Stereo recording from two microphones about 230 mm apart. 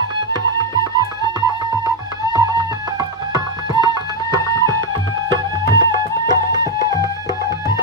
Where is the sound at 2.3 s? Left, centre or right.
Centre.